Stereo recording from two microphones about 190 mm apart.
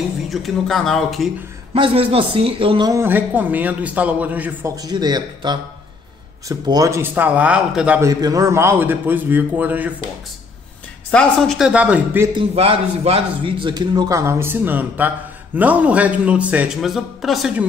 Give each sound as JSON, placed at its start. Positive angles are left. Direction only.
{"t": 0.3, "sound": "speech", "side_deg": 0}
{"t": 1.7, "sound": "a man's voice", "side_deg": -30}
{"t": 2.9, "sound": "a man's voice", "side_deg": -10}
{"t": 8.1, "sound": "a man's voice", "side_deg": -20}
{"t": 11.1, "sound": "speech", "side_deg": 5}
{"t": 12.4, "sound": "a man's voice", "side_deg": -30}